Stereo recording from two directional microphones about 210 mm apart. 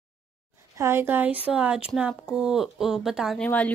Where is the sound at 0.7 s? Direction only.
10° right (ahead or behind).